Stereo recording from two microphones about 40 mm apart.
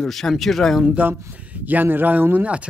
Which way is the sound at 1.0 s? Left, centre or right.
Right.